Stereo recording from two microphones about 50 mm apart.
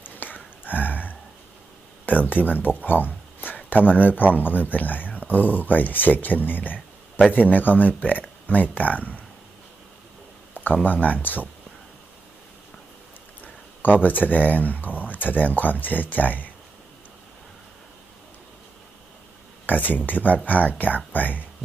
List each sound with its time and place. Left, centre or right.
0.0 s a sound: left
2.0 s speech: left
10.8 s speech: left
14.0 s speech: left
19.6 s speech: left